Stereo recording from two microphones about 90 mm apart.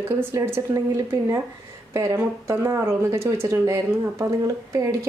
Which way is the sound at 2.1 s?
30° right (ahead or behind).